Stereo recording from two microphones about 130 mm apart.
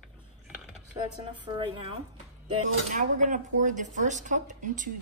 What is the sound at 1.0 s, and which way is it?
Speech, 40° right (ahead or behind).